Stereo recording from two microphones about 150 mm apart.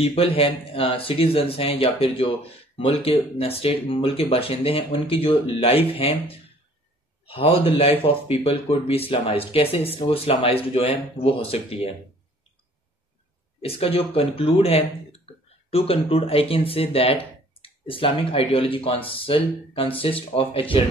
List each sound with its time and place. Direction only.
0.0 s speech: 40° left (ahead or behind)
13.6 s speech: 40° left (ahead or behind)